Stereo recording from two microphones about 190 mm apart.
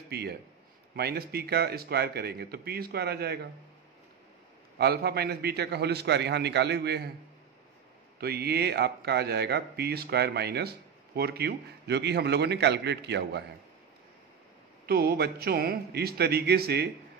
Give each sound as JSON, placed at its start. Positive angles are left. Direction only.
{"t": 0.1, "sound": "a man's voice", "side_deg": -60}
{"t": 4.7, "sound": "speech", "side_deg": -60}
{"t": 8.2, "sound": "speech", "side_deg": -55}
{"t": 14.9, "sound": "speech", "side_deg": -55}